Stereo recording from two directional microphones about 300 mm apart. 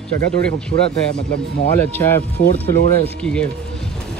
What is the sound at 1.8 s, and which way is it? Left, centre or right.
Speech, centre.